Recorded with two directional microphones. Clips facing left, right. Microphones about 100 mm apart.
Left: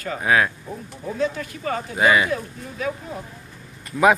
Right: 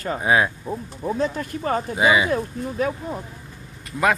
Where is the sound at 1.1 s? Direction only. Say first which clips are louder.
Left 3 dB; 35° right (ahead or behind).